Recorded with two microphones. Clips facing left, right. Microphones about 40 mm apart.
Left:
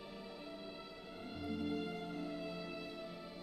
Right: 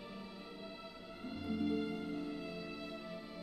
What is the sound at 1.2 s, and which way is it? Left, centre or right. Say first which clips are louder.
Music: right 3 dB; centre.